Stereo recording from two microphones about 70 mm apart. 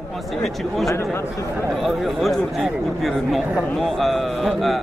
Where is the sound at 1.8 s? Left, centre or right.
Centre.